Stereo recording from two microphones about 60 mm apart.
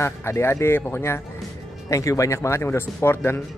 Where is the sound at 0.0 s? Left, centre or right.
Left.